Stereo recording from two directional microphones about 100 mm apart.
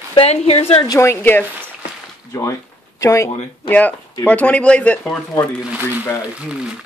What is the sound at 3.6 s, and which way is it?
Speech, 15° left (ahead or behind).